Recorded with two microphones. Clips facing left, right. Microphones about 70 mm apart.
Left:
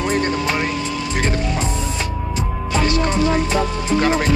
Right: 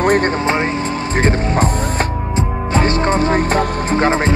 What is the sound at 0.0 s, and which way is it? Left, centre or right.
Music, right.